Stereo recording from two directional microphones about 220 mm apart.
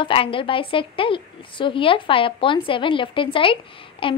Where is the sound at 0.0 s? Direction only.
25° left (ahead or behind).